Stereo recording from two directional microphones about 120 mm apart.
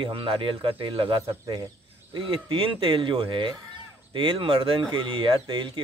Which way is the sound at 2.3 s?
50° right (ahead or behind).